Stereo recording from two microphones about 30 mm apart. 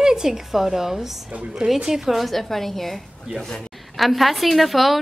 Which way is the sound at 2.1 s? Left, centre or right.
Centre.